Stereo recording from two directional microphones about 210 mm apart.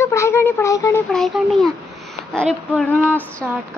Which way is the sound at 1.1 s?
Centre (ahead or behind).